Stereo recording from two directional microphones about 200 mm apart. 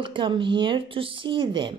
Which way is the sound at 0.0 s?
25° right (ahead or behind).